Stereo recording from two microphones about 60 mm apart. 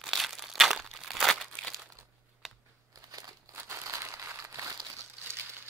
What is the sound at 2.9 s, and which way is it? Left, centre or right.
Crumpling, right.